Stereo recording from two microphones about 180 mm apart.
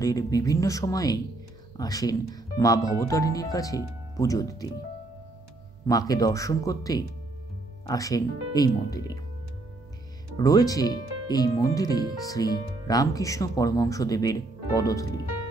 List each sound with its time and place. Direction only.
0.0 s speech: 20° left (ahead or behind)
5.9 s speech: 20° left (ahead or behind)
10.3 s speech: 20° left (ahead or behind)